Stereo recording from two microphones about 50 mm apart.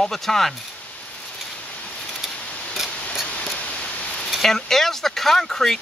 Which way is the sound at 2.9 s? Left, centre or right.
Left.